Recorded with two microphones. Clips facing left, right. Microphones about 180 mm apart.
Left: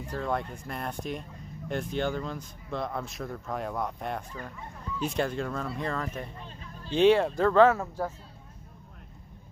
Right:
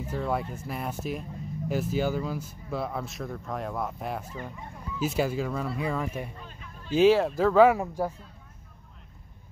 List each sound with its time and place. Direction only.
0.0 s speech: 5° right (ahead or behind)
6.4 s a sound: 35° left (ahead or behind)
6.9 s speech: 5° right (ahead or behind)